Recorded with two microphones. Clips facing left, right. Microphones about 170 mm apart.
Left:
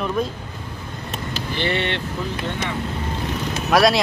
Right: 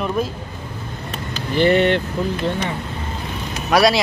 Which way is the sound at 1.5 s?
45° right (ahead or behind).